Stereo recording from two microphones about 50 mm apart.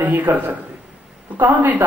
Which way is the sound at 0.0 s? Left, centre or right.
Right.